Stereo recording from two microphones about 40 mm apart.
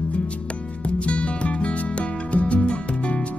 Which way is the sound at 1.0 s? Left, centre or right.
Left.